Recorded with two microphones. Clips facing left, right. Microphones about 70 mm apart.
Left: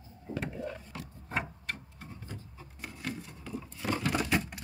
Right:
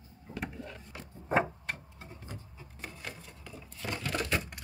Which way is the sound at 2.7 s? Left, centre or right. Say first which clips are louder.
Left 4 dB; centre.